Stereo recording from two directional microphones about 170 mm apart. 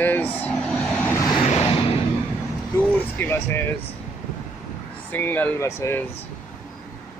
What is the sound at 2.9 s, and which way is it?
Speech, 15° left (ahead or behind).